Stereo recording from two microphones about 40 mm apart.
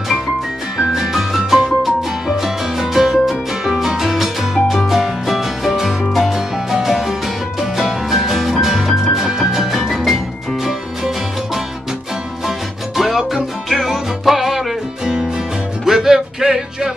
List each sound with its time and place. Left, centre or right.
0.7 s music: centre
12.4 s music: centre
15.8 s music: centre